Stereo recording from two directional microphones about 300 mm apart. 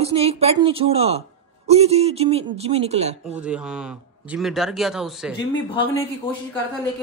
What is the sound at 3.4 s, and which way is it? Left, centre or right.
A man's voice, centre.